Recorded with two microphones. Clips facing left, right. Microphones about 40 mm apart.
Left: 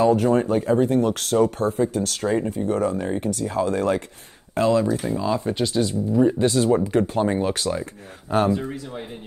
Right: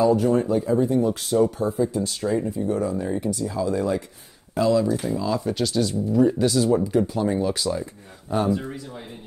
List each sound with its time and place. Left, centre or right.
0.0 s speech: left
5.1 s speech: left
6.4 s speech: left